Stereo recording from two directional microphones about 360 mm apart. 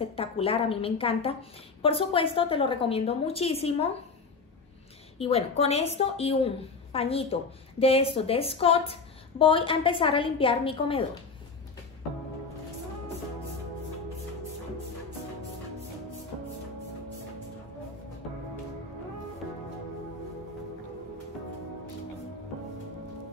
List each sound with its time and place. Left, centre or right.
0.0 s a woman's voice: centre
5.2 s a woman's voice: centre